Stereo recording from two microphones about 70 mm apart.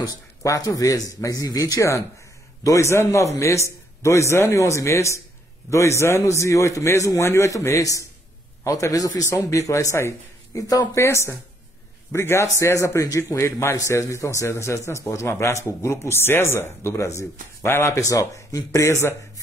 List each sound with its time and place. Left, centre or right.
0.0 s a man's voice: left